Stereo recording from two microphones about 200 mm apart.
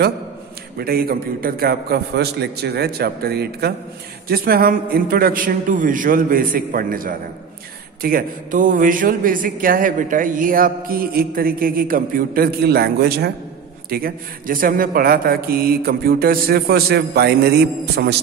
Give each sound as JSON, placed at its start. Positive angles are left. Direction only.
{"t": 0.7, "sound": "a man's voice", "side_deg": -50}